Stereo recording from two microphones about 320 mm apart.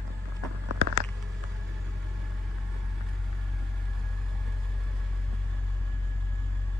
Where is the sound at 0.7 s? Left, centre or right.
Right.